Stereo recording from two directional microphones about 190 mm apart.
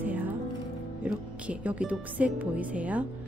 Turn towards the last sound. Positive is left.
turn(degrees=-5)  # may be behind; listen again after turning